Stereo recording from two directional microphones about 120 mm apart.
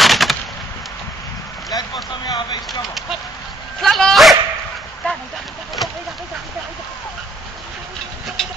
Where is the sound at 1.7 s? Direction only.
35° left (ahead or behind).